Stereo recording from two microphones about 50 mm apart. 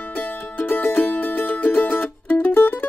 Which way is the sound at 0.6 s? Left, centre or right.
Left.